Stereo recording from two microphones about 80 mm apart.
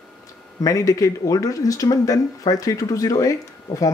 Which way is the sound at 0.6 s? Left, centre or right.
Left.